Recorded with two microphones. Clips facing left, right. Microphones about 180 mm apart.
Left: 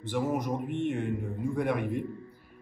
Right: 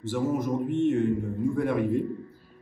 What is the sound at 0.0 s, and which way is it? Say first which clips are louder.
A man's voice: right 3 dB; 15° left (ahead or behind).